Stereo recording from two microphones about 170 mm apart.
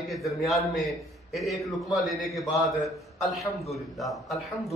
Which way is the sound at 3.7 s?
Centre (ahead or behind).